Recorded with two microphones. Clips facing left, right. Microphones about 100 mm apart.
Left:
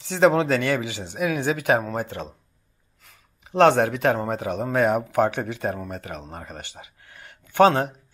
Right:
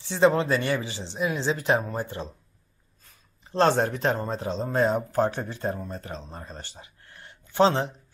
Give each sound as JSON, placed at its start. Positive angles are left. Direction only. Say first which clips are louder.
{"t": 0.1, "sound": "speech", "louder": "left 3 dB", "side_deg": 75}
{"t": 0.7, "sound": "speech", "louder": "left 3 dB", "side_deg": 15}
{"t": 1.2, "sound": "speech", "louder": "left 3 dB", "side_deg": 60}
{"t": 3.5, "sound": "speech", "louder": "left 5 dB", "side_deg": 65}
{"t": 7.5, "sound": "speech", "louder": "left 4 dB", "side_deg": 55}